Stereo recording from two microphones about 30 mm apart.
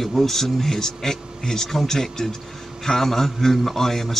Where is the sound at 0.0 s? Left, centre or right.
Centre.